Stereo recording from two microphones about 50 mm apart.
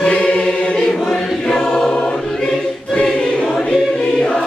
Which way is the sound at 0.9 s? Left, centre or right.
Centre.